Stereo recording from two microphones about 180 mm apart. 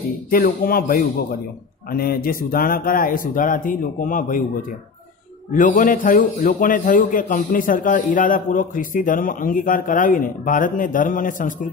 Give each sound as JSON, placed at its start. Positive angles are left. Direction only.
{"t": 0.3, "sound": "a man's voice", "side_deg": 55}